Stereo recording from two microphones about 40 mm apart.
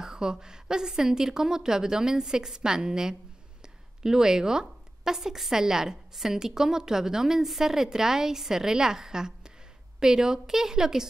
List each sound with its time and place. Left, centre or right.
0.0 s a woman's voice: centre